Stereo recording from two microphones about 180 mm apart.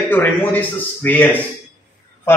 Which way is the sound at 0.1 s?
10° left (ahead or behind).